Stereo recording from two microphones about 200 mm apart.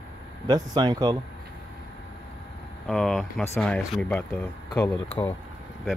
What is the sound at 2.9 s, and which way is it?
Speech, centre (ahead or behind).